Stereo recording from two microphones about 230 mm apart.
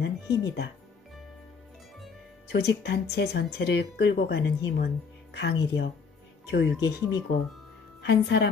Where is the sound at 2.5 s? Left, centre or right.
Left.